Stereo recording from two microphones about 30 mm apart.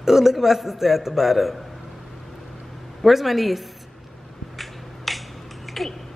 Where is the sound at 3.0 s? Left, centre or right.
Centre.